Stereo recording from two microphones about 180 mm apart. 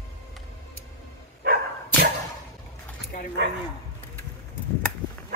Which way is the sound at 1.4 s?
60° right (ahead or behind).